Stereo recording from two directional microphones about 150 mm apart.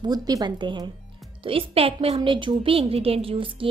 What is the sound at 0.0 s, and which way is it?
Speech, 25° right (ahead or behind).